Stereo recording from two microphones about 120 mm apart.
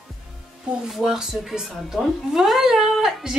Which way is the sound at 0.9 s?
5° right (ahead or behind).